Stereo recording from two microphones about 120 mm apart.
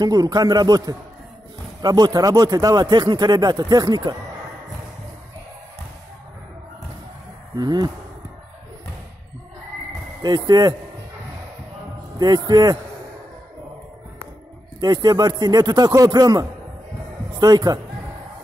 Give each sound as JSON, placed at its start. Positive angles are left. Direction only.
{"t": 0.0, "sound": "speech", "side_deg": -35}
{"t": 7.5, "sound": "speech", "side_deg": -35}
{"t": 10.2, "sound": "speech", "side_deg": -40}
{"t": 12.2, "sound": "speech", "side_deg": -35}
{"t": 14.8, "sound": "speech", "side_deg": -35}